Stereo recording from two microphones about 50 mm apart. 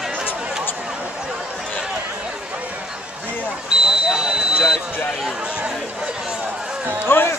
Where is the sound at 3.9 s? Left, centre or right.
Centre.